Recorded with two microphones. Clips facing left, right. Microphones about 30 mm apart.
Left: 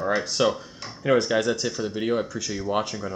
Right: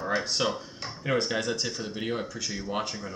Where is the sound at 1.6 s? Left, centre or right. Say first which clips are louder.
Left 5 dB; centre.